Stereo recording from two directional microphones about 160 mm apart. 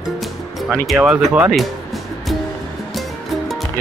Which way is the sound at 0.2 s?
Centre (ahead or behind).